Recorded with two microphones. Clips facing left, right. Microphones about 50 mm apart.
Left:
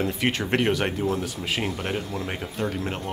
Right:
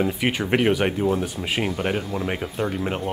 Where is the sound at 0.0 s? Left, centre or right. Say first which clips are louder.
Right 2 dB; centre.